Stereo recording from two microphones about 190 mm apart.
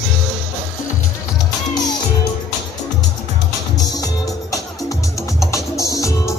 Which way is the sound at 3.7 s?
20° left (ahead or behind).